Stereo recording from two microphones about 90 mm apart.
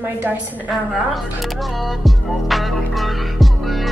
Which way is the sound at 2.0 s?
Centre (ahead or behind).